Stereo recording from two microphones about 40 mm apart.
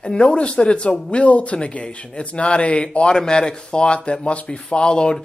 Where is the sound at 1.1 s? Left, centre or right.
Left.